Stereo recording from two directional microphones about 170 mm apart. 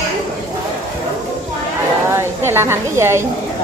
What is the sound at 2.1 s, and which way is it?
A woman's voice, 15° right (ahead or behind).